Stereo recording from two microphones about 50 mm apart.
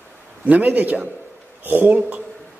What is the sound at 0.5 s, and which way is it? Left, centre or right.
A man's voice, right.